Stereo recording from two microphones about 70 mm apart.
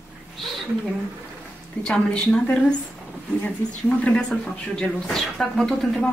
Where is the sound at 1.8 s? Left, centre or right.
Centre.